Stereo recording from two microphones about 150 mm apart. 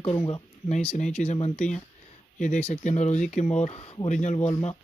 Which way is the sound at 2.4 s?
55° left (ahead or behind).